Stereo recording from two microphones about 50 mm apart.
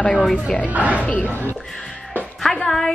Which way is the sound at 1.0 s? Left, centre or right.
Left.